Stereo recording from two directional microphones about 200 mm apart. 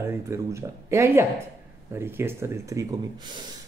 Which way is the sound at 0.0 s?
15° right (ahead or behind).